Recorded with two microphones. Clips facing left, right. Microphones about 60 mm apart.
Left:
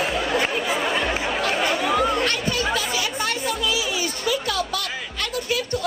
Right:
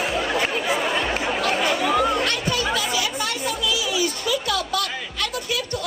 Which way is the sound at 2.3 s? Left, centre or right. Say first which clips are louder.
Even; left.